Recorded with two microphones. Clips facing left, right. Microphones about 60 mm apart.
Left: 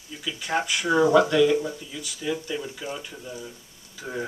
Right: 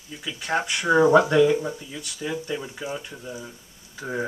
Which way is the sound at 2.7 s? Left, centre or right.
Centre.